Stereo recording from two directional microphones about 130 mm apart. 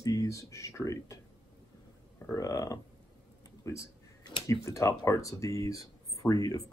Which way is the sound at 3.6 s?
25° left (ahead or behind).